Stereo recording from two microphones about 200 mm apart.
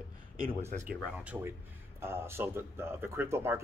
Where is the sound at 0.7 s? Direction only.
35° right (ahead or behind).